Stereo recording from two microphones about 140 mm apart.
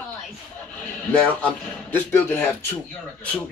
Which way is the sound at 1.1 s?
10° left (ahead or behind).